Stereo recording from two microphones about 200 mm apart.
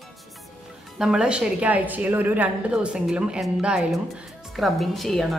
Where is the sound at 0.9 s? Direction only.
5° right (ahead or behind).